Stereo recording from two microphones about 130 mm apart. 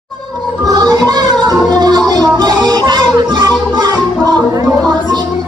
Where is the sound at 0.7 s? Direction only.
30° right (ahead or behind).